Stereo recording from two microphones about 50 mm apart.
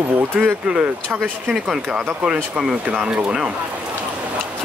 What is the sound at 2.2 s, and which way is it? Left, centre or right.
Speech, centre.